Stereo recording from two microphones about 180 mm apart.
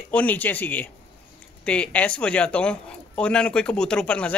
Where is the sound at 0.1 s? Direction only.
10° left (ahead or behind).